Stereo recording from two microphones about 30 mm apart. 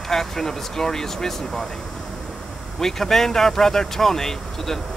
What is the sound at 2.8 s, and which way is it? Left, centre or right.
Speech, centre.